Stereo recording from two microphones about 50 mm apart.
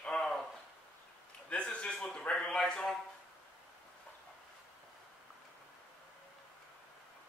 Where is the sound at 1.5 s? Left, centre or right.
Left.